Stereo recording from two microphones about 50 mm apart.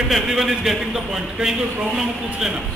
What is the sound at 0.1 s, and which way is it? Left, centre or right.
A man's voice, centre.